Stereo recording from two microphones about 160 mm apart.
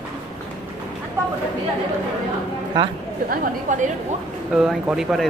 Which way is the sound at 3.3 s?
50° right (ahead or behind).